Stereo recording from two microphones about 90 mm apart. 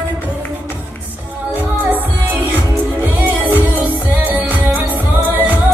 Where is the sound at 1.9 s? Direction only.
20° right (ahead or behind).